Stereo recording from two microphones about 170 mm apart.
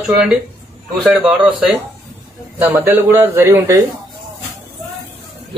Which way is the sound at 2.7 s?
10° right (ahead or behind).